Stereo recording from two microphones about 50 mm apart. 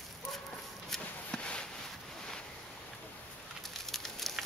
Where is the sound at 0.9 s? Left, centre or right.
Centre.